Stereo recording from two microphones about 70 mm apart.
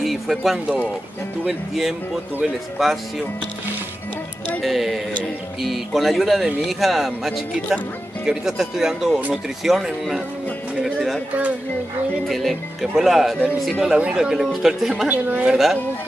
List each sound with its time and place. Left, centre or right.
0.0 s music: centre
1.5 s speech: centre
4.6 s speech: centre
10.8 s a sound: centre
12.3 s speech: centre
13.9 s speech: centre
15.0 s a woman's voice: right
15.5 s speech: centre